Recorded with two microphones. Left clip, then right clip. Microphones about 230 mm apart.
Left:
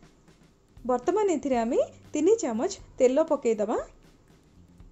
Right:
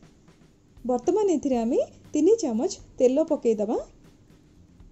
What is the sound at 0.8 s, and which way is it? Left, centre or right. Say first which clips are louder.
A woman's voice: right 2 dB; centre.